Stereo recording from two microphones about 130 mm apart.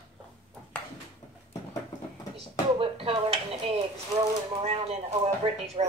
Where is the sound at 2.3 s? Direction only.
45° right (ahead or behind).